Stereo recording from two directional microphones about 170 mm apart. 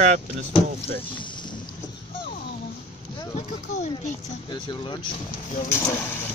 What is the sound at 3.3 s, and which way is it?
Speech, 40° left (ahead or behind).